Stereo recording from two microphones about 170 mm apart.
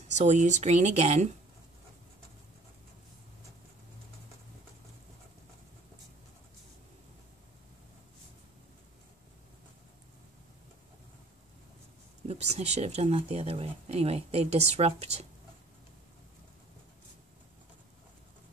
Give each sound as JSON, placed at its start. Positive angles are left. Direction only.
{"t": 0.1, "sound": "speech", "side_deg": -45}
{"t": 12.3, "sound": "speech", "side_deg": -40}